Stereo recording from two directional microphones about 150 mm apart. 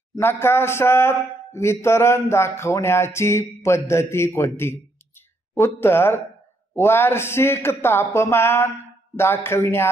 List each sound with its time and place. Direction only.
0.1 s a man's voice: 15° left (ahead or behind)